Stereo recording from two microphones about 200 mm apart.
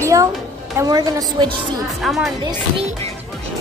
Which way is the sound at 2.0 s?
Centre (ahead or behind).